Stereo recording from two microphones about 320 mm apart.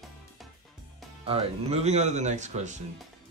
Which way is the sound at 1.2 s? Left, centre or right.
Centre.